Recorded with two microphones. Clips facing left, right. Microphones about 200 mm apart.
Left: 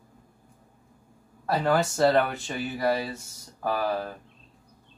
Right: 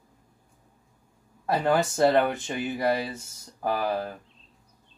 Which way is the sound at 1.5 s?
20° right (ahead or behind).